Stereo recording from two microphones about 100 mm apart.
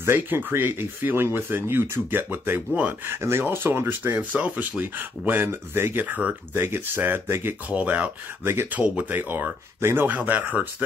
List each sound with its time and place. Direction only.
0.0 s speech: 20° right (ahead or behind)
8.5 s speech: 25° right (ahead or behind)